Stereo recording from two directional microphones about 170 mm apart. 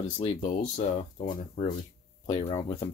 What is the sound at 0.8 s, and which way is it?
Speech, 45° left (ahead or behind).